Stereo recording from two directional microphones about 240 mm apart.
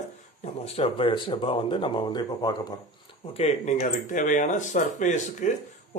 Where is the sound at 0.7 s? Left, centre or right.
Left.